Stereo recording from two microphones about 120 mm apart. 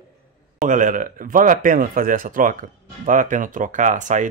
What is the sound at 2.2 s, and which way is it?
Speech, 90° right.